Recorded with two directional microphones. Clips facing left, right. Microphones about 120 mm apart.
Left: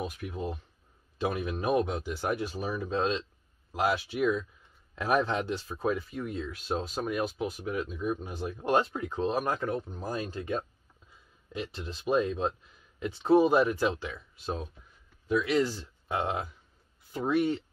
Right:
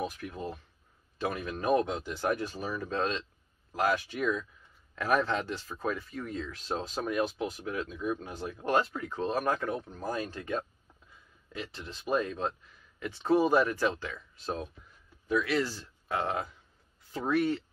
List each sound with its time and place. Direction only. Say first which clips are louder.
0.0 s speech: left 1 dB; 10° left (ahead or behind)
11.8 s speech: left 3 dB; 20° left (ahead or behind)
17.4 s speech: left 1 dB; 20° left (ahead or behind)